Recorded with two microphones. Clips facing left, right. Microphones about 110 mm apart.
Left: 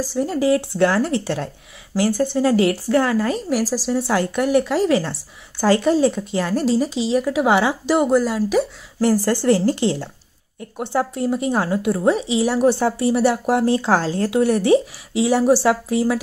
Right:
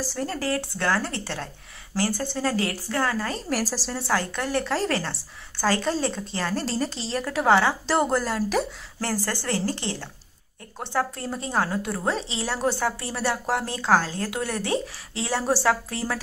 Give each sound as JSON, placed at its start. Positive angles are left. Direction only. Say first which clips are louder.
{"t": 0.1, "sound": "a woman's voice", "louder": "left 11 dB", "side_deg": 10}
{"t": 9.0, "sound": "a woman's voice", "louder": "left 11 dB", "side_deg": 20}